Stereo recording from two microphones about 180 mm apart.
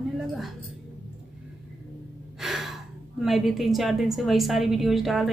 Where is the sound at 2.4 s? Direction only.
Centre (ahead or behind).